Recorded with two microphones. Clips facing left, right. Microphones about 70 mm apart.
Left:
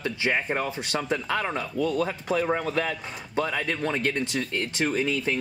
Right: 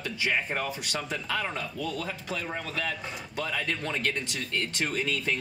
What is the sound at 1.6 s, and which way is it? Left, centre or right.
Speech, centre.